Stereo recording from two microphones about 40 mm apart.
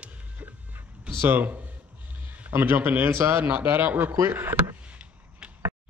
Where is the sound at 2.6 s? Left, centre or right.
Right.